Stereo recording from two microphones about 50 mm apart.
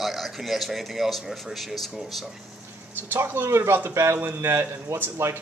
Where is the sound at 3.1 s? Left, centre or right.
Right.